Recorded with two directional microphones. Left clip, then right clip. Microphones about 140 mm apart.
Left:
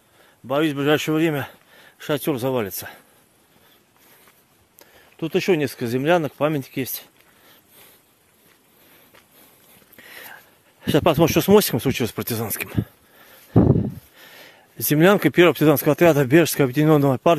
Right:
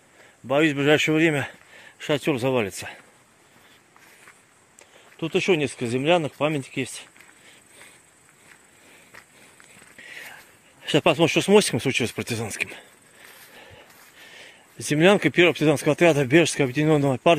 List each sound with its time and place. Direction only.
0.5 s speech: 15° left (ahead or behind)
5.2 s speech: 55° left (ahead or behind)
9.9 s a sound: 50° left (ahead or behind)
10.8 s speech: 50° left (ahead or behind)
14.1 s speech: 55° left (ahead or behind)